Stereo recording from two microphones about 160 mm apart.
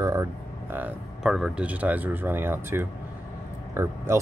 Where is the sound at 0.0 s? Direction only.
20° right (ahead or behind).